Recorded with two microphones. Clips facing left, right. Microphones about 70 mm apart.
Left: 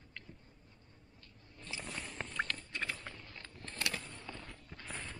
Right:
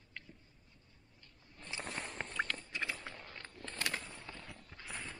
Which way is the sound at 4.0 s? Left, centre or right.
Centre.